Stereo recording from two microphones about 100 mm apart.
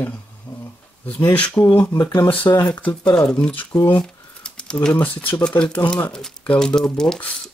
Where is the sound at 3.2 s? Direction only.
10° left (ahead or behind).